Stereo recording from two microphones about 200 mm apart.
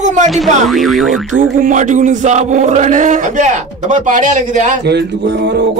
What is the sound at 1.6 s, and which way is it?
A man's voice, 40° right (ahead or behind).